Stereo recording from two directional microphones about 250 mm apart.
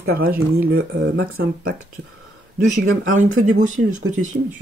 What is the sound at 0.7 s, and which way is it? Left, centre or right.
Speech, right.